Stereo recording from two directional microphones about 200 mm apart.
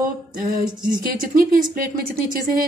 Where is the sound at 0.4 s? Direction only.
45° right (ahead or behind).